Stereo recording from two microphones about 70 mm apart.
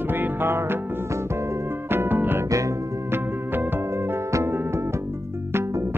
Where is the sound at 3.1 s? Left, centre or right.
Right.